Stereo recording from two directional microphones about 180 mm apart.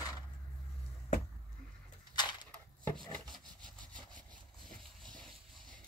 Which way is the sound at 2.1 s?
25° left (ahead or behind).